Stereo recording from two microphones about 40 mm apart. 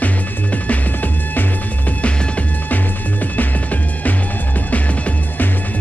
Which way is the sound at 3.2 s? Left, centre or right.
Left.